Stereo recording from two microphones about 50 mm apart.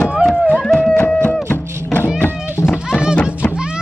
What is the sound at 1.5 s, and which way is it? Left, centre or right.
Music, left.